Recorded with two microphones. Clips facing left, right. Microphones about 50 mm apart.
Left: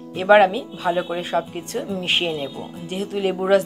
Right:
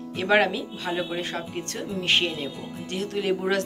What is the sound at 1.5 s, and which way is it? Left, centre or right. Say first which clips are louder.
Speech: left 4 dB; centre.